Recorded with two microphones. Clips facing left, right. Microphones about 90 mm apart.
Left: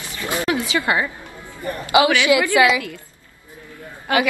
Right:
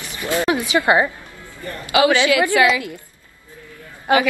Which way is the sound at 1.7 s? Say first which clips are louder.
Left 4 dB; 15° left (ahead or behind).